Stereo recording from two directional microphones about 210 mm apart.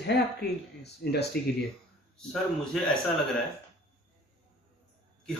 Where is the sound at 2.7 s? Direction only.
Centre (ahead or behind).